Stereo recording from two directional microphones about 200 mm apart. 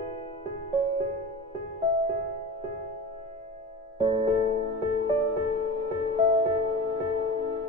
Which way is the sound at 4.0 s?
25° right (ahead or behind).